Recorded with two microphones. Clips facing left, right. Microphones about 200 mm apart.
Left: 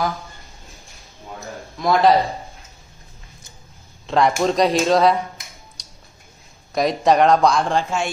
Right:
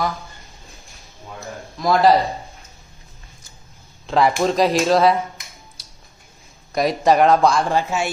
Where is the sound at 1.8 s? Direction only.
Centre (ahead or behind).